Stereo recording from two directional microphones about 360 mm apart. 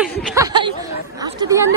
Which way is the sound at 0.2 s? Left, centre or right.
Centre.